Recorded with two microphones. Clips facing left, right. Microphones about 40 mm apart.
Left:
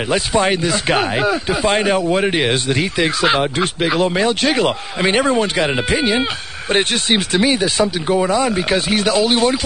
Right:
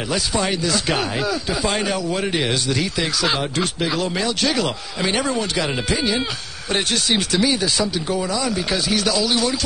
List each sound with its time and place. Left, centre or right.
0.1 s speech: left